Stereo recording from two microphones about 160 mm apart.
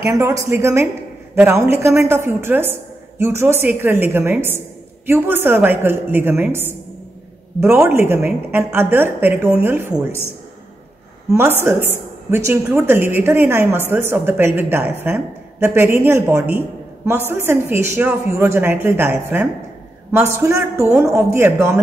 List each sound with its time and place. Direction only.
0.1 s a woman's voice: 20° right (ahead or behind)
11.7 s a woman's voice: 15° right (ahead or behind)